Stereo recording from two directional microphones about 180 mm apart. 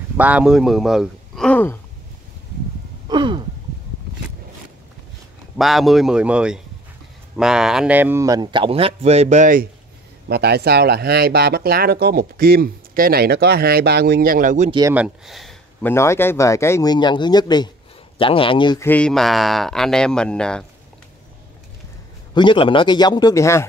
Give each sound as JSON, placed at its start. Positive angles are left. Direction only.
{"t": 0.2, "sound": "speech", "side_deg": -5}
{"t": 3.1, "sound": "sigh", "side_deg": -25}
{"t": 5.6, "sound": "speech", "side_deg": 0}
{"t": 10.2, "sound": "speech", "side_deg": -65}
{"t": 14.7, "sound": "speech", "side_deg": -20}
{"t": 15.0, "sound": "speech", "side_deg": 0}
{"t": 15.8, "sound": "speech", "side_deg": 15}
{"t": 18.9, "sound": "speech", "side_deg": 5}
{"t": 22.3, "sound": "speech", "side_deg": 25}